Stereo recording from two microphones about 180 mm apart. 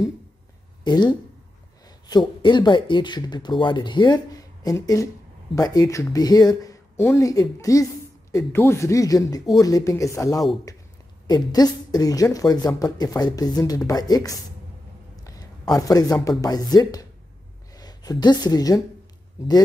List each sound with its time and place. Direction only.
0.8 s a woman's voice: 25° left (ahead or behind)
10.7 s a sound: 20° left (ahead or behind)
11.2 s a woman's voice: 20° left (ahead or behind)